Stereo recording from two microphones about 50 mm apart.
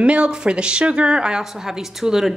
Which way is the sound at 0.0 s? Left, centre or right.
Right.